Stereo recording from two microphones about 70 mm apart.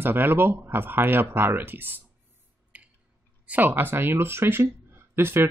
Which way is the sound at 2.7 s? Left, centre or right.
Right.